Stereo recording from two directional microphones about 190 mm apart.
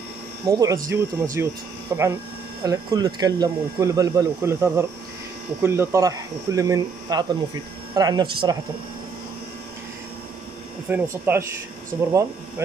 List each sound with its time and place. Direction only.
0.5 s speech: 15° right (ahead or behind)
10.9 s speech: 10° right (ahead or behind)